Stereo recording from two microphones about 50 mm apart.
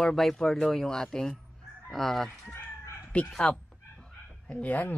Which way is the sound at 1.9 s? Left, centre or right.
Centre.